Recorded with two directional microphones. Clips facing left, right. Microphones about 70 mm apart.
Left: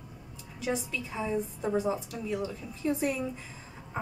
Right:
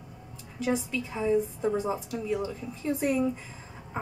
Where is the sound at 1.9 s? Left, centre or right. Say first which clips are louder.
Right 2 dB; centre.